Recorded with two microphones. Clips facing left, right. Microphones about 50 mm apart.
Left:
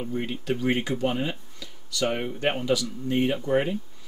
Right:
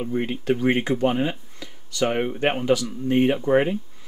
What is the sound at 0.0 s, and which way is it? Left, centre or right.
A man's voice, right.